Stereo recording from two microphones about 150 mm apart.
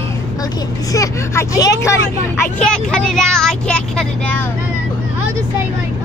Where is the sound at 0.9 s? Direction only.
20° left (ahead or behind).